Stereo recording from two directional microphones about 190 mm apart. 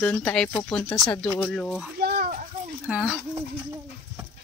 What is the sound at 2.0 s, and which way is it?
Children playing, 55° right (ahead or behind).